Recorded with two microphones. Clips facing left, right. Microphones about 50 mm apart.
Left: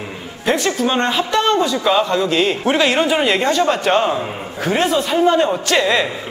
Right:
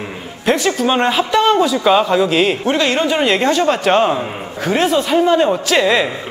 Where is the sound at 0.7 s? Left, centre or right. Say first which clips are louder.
Right 2 dB; centre.